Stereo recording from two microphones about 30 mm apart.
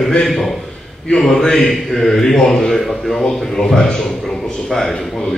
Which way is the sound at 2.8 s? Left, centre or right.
Centre.